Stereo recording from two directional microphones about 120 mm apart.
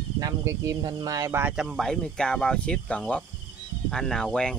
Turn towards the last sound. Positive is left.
turn(degrees=5)  # may be behind; listen again after turning